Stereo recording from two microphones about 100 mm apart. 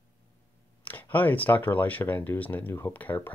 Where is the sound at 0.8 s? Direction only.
20° left (ahead or behind).